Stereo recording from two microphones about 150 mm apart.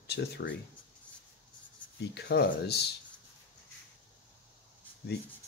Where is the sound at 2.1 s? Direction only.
90° left.